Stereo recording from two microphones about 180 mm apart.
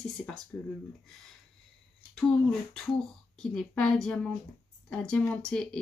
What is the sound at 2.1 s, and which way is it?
Speech, 5° left (ahead or behind).